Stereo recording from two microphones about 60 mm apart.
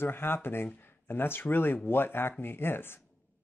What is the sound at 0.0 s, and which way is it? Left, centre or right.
Speech, left.